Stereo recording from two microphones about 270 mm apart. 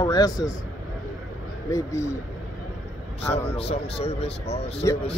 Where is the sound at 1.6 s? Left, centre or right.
Centre.